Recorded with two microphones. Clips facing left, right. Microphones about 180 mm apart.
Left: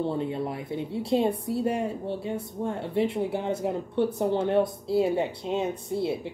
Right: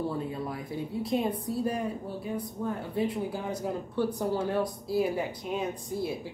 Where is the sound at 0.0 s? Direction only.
25° left (ahead or behind).